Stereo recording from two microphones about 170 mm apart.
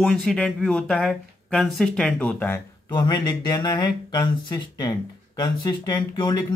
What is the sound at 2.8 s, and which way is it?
Speech, 25° left (ahead or behind).